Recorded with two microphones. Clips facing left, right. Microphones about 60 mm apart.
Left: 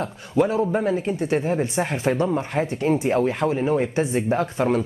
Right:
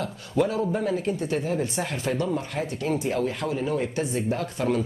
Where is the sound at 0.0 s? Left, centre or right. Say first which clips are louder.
Left 3 dB; left.